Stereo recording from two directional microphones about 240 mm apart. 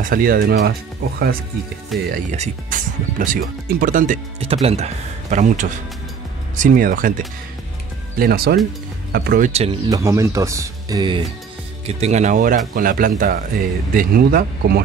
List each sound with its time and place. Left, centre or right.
0.0 s speech: right
1.9 s speech: centre
2.3 s speech: right
8.2 s speech: right
9.5 s speech: right
9.8 s speech: centre; by 14.8 s right